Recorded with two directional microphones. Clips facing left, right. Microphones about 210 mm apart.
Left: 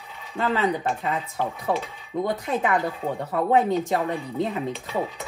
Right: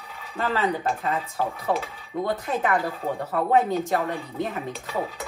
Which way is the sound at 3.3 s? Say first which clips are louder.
Left 1 dB; 15° left (ahead or behind).